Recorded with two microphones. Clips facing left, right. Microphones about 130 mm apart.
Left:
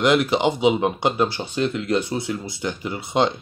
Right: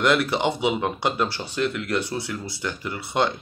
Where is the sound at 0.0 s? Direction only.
15° left (ahead or behind).